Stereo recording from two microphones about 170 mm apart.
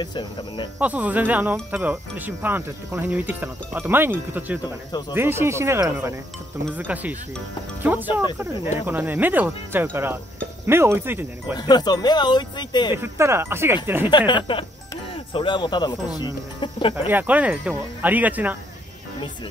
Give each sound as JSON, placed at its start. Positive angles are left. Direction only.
{"t": 0.0, "sound": "speech", "side_deg": 25}
{"t": 0.7, "sound": "speech", "side_deg": -10}
{"t": 8.1, "sound": "speech", "side_deg": 25}
{"t": 8.8, "sound": "speech", "side_deg": -10}
{"t": 11.5, "sound": "speech", "side_deg": 25}
{"t": 12.9, "sound": "speech", "side_deg": -15}
{"t": 14.1, "sound": "speech", "side_deg": 25}
{"t": 17.1, "sound": "speech", "side_deg": -10}